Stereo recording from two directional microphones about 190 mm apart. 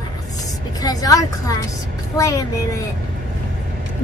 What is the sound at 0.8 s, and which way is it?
A man's voice, 20° left (ahead or behind).